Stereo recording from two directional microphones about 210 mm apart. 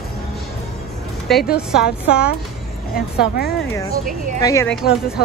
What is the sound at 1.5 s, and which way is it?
Speech, 5° right (ahead or behind).